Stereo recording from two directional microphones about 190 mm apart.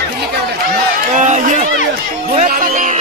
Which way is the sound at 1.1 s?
40° right (ahead or behind).